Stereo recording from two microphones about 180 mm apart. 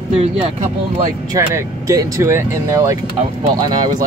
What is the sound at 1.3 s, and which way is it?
Speech, 15° right (ahead or behind).